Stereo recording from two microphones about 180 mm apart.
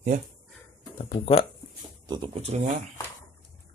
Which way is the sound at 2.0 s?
25° right (ahead or behind).